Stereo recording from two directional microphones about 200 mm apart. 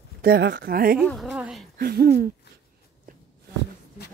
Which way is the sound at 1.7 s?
50° right (ahead or behind).